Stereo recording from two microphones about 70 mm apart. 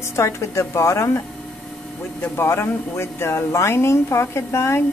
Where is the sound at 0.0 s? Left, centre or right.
Left.